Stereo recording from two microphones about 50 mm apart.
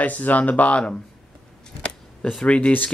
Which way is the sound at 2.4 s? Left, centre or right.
Left.